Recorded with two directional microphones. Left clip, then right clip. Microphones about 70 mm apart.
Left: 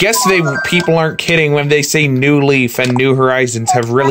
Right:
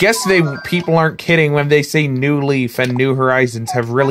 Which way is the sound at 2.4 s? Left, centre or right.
Centre.